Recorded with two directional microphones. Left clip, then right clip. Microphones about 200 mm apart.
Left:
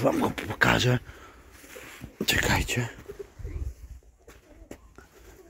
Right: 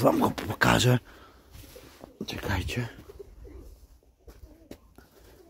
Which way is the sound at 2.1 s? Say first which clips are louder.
Left 9 dB; 20° left (ahead or behind).